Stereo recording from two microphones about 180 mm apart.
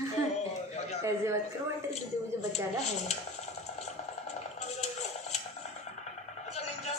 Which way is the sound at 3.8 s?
40° left (ahead or behind).